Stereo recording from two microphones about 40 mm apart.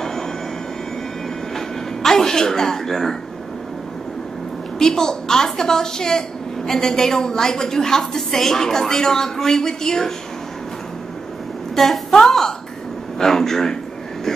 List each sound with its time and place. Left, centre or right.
2.0 s a woman's voice: centre
4.7 s a woman's voice: centre
11.7 s a woman's voice: centre